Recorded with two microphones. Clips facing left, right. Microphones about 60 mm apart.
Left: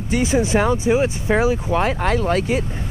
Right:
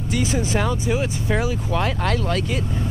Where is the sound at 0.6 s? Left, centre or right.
Left.